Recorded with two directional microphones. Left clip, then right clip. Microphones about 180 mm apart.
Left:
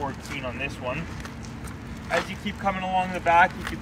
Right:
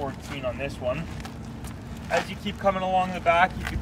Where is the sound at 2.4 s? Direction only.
60° right (ahead or behind).